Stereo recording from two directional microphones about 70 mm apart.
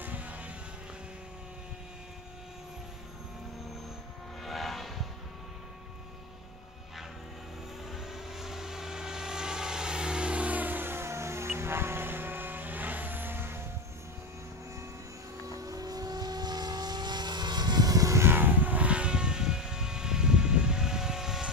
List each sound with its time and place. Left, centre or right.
0.0 s vehicle: right
4.4 s vehicle: centre
7.9 s vehicle: centre; by 13.6 s right
15.4 s vehicle: right
18.2 s aircraft: right; by 21.5 s centre